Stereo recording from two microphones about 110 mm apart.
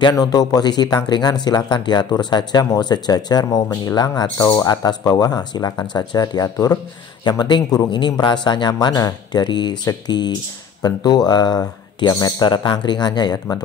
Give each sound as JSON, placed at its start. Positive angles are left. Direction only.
{"t": 0.0, "sound": "a man's voice", "side_deg": 35}